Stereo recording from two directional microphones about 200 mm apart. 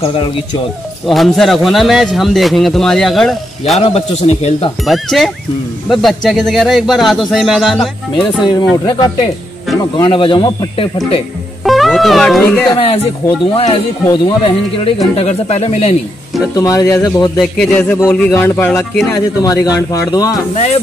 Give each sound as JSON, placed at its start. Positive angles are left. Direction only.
{"t": 0.0, "sound": "speech", "side_deg": 25}
{"t": 1.0, "sound": "speech", "side_deg": 0}
{"t": 3.7, "sound": "speech", "side_deg": 30}
{"t": 4.8, "sound": "speech", "side_deg": 0}
{"t": 8.4, "sound": "speech", "side_deg": 20}
{"t": 11.6, "sound": "speech", "side_deg": 0}
{"t": 12.7, "sound": "speech", "side_deg": 25}
{"t": 16.5, "sound": "a man's voice", "side_deg": 15}
{"t": 17.4, "sound": "speech", "side_deg": 0}
{"t": 17.8, "sound": "a man's voice", "side_deg": 15}